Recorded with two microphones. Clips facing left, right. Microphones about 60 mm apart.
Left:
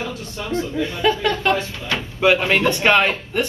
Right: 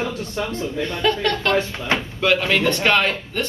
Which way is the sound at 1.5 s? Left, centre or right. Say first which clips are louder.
Right 4 dB; right.